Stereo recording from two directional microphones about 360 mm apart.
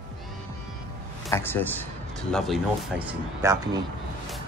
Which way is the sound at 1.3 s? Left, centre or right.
Centre.